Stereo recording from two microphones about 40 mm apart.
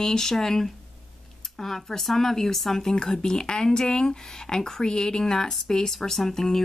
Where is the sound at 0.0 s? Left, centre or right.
Centre.